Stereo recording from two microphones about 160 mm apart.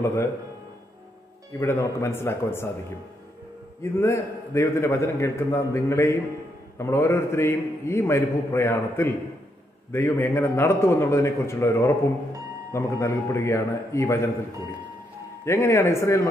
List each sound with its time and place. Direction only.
0.0 s a man's voice: 15° left (ahead or behind)
1.6 s a man's voice: 15° left (ahead or behind)
4.0 s a man's voice: 15° left (ahead or behind)
15.4 s a man's voice: 15° left (ahead or behind)